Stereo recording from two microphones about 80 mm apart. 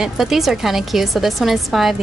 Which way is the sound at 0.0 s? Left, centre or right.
Centre.